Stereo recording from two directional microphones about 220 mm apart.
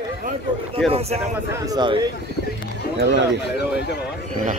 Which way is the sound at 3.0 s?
55° right (ahead or behind).